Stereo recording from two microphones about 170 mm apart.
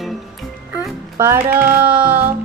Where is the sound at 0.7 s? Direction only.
10° right (ahead or behind).